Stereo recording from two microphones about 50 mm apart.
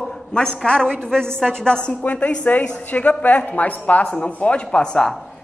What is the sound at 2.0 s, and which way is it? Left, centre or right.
A man's voice, left.